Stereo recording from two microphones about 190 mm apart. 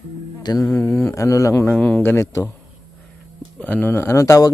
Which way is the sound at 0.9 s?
15° left (ahead or behind).